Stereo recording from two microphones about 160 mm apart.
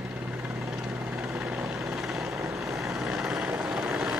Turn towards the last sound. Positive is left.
turn(degrees=-5)  # may be behind; listen again after turning